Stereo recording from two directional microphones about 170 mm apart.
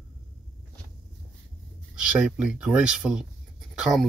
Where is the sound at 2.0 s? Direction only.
5° right (ahead or behind).